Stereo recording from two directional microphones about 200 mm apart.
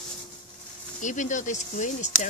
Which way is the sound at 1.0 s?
40° left (ahead or behind).